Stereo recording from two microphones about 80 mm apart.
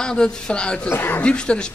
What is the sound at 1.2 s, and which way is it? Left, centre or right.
Speech, centre.